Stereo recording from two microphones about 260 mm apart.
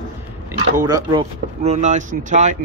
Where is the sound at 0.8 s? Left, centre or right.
Centre.